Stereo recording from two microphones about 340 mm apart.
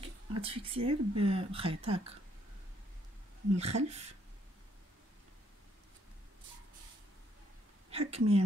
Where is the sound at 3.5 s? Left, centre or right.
Centre.